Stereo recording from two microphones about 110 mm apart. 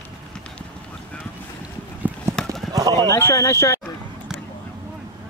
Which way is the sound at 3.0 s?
25° left (ahead or behind).